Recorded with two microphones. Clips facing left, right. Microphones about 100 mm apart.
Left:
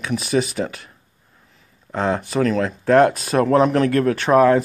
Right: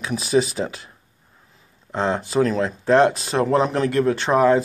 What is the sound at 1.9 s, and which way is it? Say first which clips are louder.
Speech: even; centre (ahead or behind).